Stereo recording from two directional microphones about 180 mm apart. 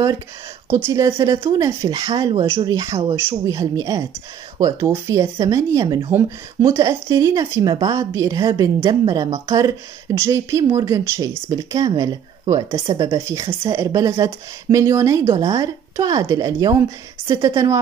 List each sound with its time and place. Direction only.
0.7 s a woman's voice: 15° right (ahead or behind)